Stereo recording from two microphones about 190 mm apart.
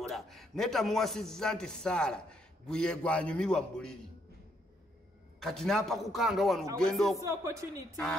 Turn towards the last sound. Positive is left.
turn(degrees=-15)  # may be behind; listen again after turning